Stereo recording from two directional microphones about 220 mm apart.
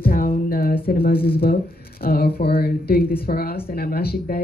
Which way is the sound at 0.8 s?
45° left (ahead or behind).